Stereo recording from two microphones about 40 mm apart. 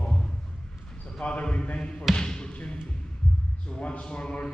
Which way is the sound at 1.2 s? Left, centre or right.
Left.